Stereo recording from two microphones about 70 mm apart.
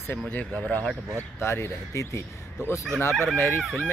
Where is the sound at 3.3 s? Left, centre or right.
Left.